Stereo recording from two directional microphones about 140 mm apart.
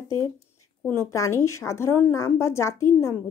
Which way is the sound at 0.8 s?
20° left (ahead or behind).